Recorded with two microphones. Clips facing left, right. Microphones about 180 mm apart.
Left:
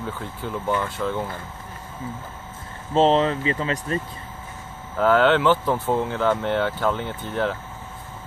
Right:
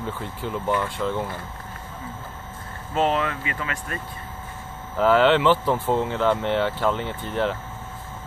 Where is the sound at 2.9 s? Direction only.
30° left (ahead or behind).